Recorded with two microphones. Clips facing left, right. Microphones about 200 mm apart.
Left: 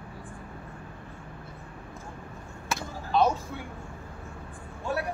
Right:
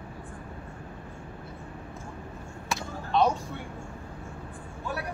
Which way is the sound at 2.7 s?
Centre (ahead or behind).